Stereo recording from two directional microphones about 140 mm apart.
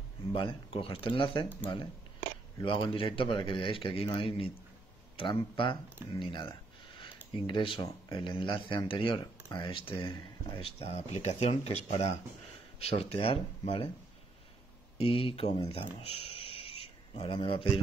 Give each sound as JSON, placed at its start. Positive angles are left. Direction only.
{"t": 0.3, "sound": "speech", "side_deg": 40}
{"t": 5.1, "sound": "speech", "side_deg": 35}
{"t": 15.0, "sound": "speech", "side_deg": 40}